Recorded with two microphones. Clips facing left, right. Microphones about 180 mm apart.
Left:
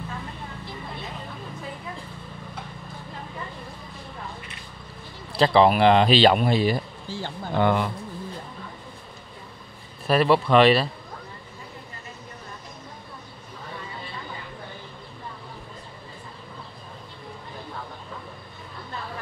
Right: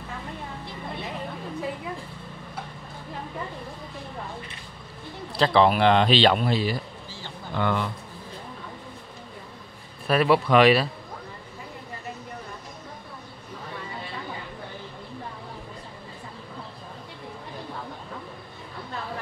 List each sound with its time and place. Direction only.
5.4 s speech: 5° left (ahead or behind)
10.0 s speech: centre (ahead or behind)